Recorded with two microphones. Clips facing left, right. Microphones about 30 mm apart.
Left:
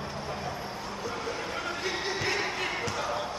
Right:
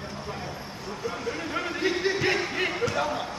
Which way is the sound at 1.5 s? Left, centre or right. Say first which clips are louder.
Right 9 dB; centre.